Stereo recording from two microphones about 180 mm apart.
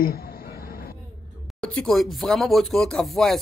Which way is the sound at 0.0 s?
55° left (ahead or behind).